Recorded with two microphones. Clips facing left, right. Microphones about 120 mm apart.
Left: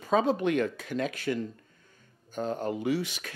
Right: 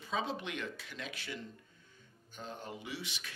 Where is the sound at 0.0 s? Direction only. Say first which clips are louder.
Left 12 dB; 45° left (ahead or behind).